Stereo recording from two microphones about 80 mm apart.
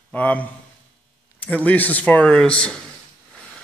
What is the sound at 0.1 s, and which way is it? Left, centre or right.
Speech, centre.